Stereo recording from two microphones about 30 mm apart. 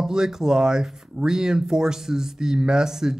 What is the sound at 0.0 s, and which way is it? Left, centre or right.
Speech, centre.